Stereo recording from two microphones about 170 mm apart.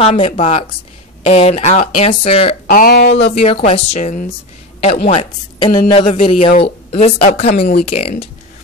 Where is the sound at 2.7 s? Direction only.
65° left (ahead or behind).